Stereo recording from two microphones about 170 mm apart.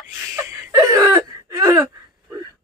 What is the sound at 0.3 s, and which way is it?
Whimper, 20° right (ahead or behind).